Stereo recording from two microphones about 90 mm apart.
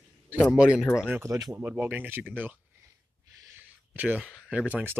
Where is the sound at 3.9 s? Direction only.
15° right (ahead or behind).